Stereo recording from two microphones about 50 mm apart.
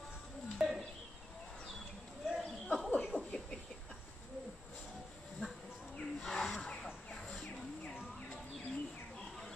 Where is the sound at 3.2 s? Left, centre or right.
Left.